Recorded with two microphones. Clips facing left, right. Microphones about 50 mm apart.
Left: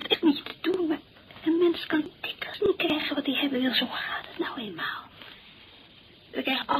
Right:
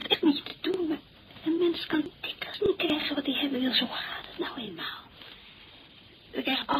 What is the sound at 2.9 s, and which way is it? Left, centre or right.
Speech, centre.